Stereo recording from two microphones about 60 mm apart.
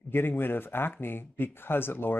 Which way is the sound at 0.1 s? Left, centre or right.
Left.